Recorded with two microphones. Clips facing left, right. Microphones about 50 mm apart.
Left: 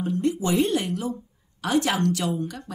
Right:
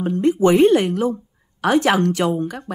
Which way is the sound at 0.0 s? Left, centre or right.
Right.